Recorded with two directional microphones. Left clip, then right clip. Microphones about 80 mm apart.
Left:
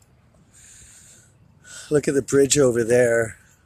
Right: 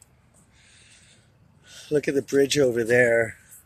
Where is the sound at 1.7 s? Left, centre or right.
Left.